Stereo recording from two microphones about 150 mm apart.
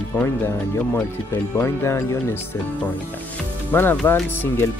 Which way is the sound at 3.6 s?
15° left (ahead or behind).